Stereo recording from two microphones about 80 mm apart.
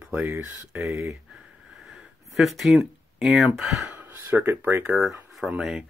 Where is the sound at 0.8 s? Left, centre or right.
Centre.